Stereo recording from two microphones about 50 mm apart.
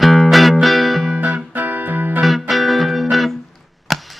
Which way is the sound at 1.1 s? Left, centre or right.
Right.